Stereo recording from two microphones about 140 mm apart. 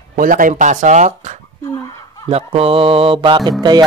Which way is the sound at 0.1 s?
75° right (ahead or behind).